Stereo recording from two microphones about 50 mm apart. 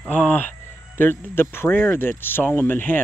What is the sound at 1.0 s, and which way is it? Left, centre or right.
Speech, left.